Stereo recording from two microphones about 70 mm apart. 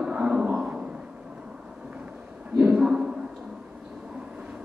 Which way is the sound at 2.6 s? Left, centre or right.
Centre.